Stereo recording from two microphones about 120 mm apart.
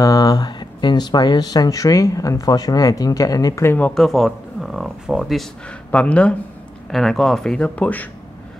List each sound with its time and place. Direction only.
0.0 s speech: 30° left (ahead or behind)
3.9 s speech: centre (ahead or behind)